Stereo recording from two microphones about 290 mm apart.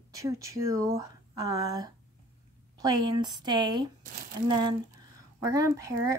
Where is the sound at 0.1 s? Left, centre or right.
Centre.